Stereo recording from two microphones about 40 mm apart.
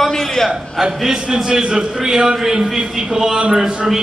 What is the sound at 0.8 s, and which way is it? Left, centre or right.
A man's voice, centre.